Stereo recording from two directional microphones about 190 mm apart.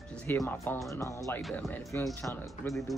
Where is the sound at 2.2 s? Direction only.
15° left (ahead or behind).